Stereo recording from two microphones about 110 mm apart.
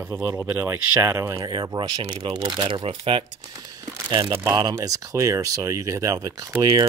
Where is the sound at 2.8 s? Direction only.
55° right (ahead or behind).